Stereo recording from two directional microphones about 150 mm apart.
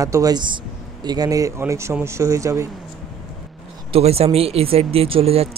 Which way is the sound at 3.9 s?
40° right (ahead or behind).